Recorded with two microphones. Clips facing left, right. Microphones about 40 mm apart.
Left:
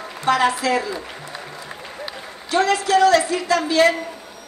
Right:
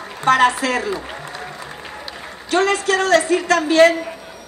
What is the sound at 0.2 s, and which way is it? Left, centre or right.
Speech, right.